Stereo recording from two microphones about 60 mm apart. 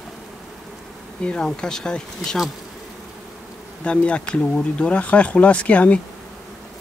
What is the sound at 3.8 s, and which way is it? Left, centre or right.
Speech, centre.